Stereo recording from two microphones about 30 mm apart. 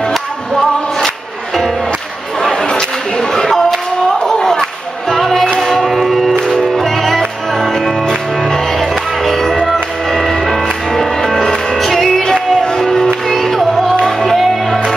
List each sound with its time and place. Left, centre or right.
1.0 s music: centre
2.6 s a sound: left
3.4 s a sound: centre
4.3 s music: centre
9.2 s music: centre
12.2 s music: left
12.7 s music: centre